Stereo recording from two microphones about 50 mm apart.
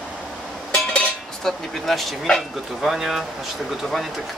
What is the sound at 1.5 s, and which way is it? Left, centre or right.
Speech, centre.